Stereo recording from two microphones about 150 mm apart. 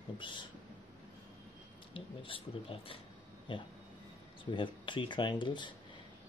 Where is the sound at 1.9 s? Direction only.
35° left (ahead or behind).